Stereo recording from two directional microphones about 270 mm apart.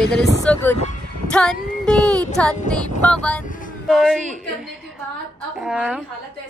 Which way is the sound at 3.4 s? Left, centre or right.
Left.